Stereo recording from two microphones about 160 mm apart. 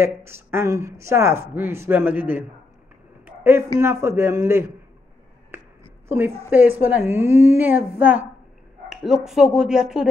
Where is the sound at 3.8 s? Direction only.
15° right (ahead or behind).